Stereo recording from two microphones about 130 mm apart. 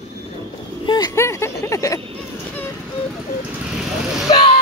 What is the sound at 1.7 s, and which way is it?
Vehicle, 25° left (ahead or behind).